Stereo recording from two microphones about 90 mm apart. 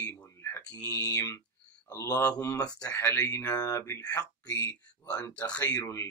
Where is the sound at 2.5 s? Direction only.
45° left (ahead or behind).